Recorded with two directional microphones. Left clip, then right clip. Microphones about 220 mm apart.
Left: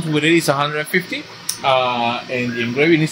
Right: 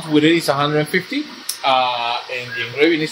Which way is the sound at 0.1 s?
25° left (ahead or behind).